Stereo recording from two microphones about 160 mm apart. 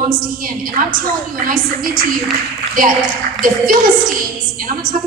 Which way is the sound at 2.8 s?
60° right (ahead or behind).